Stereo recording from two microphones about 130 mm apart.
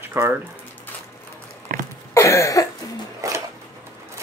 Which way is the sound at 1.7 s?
90° right.